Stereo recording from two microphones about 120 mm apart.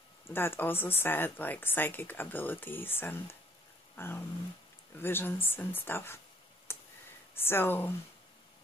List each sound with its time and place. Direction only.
0.3 s speech: 20° left (ahead or behind)
3.9 s a sound: 20° left (ahead or behind)
4.9 s speech: 20° left (ahead or behind)
6.7 s clicking: 20° left (ahead or behind)
7.3 s speech: 20° left (ahead or behind)